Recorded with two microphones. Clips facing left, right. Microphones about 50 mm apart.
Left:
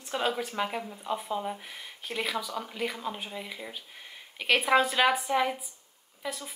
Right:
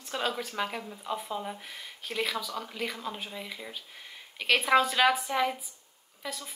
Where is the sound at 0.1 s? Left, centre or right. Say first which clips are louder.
Left 2 dB; centre.